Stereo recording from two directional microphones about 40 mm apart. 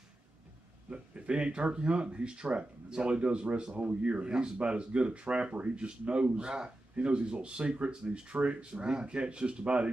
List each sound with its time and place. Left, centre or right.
0.8 s speech: right